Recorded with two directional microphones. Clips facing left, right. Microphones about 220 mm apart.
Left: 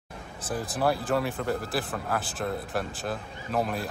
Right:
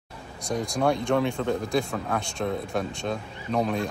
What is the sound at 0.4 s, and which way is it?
Speech, 5° left (ahead or behind).